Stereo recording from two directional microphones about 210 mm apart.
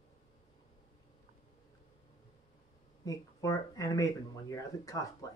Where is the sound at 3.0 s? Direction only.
15° left (ahead or behind).